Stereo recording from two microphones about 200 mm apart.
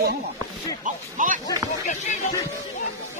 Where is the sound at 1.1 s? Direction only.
40° right (ahead or behind).